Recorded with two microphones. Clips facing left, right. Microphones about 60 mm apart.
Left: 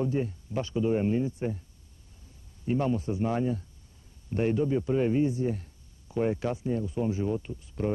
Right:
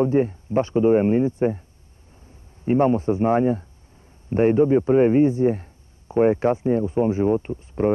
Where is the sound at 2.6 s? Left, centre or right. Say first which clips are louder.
Right 10 dB; right.